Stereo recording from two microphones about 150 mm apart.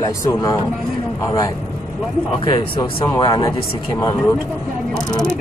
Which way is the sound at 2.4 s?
35° left (ahead or behind).